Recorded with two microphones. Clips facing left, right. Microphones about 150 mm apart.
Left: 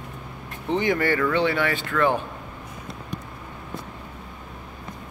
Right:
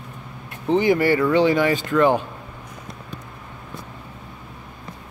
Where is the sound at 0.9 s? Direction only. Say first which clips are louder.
Right 4 dB; 10° right (ahead or behind).